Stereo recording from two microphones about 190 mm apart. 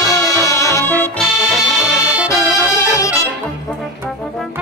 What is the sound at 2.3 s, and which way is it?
Music, 15° left (ahead or behind).